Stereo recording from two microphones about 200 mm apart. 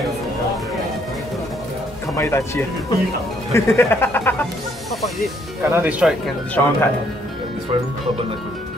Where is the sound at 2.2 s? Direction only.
15° left (ahead or behind).